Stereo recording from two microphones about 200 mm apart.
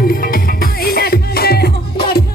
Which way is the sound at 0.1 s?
45° left (ahead or behind).